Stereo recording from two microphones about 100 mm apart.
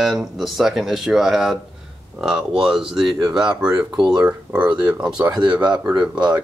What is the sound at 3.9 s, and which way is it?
Speech, 45° right (ahead or behind).